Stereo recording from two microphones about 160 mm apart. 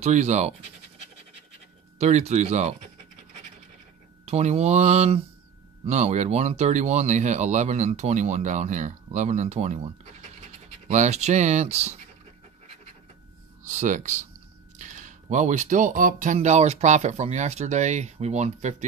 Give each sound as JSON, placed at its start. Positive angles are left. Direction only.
{"t": 0.0, "sound": "speech", "side_deg": -45}
{"t": 2.0, "sound": "speech", "side_deg": -45}
{"t": 4.3, "sound": "speech", "side_deg": -45}
{"t": 10.9, "sound": "speech", "side_deg": -45}
{"t": 13.7, "sound": "speech", "side_deg": -50}